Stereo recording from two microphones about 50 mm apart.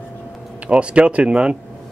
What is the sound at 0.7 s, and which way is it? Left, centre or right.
Speech, right.